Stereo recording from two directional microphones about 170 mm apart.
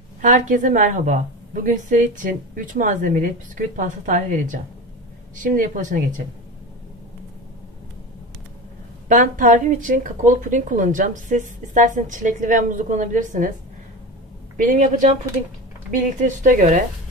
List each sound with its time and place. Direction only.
0.2 s speech: 45° right (ahead or behind)
9.1 s speech: 50° right (ahead or behind)
14.6 s speech: 50° right (ahead or behind)